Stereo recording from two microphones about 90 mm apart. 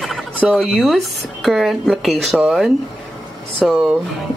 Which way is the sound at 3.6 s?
Centre (ahead or behind).